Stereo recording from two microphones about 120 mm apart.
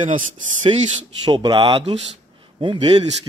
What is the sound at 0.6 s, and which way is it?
Speech, 90° right.